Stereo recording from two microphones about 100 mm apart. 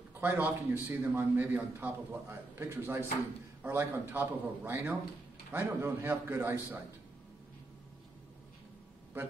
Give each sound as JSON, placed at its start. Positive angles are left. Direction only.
{"t": 0.1, "sound": "a man's voice", "side_deg": -20}